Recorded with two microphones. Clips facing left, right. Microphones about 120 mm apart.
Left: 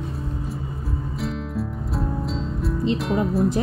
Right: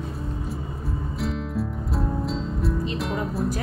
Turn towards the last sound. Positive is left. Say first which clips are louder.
# left 5 dB
turn(degrees=0)  # may be behind; listen again after turning